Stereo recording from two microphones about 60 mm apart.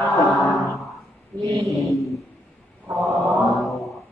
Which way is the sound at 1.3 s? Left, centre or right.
Left.